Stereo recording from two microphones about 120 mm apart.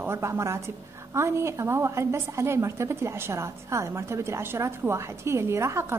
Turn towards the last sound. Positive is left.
turn(degrees=-20)  # may be behind; listen again after turning